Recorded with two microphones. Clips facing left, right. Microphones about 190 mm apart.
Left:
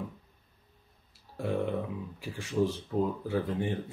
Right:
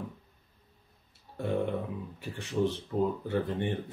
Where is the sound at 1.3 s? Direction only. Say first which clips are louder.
Even; centre (ahead or behind).